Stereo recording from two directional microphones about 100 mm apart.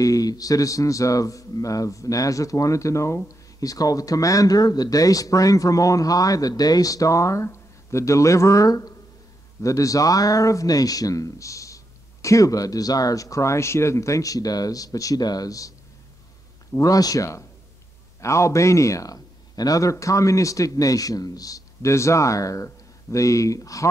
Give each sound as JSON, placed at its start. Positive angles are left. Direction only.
{"t": 0.0, "sound": "speech", "side_deg": 35}
{"t": 16.7, "sound": "speech", "side_deg": 35}